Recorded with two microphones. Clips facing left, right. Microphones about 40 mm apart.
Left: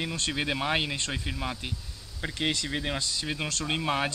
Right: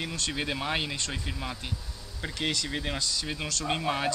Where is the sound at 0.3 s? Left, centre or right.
Centre.